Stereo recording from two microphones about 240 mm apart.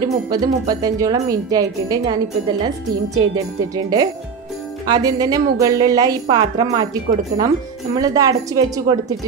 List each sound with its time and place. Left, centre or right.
0.0 s speech: centre
3.7 s speech: centre